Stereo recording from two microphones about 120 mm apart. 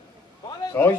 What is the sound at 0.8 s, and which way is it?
Speech, 15° left (ahead or behind).